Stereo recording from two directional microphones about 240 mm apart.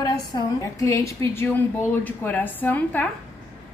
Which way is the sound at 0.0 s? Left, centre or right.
Centre.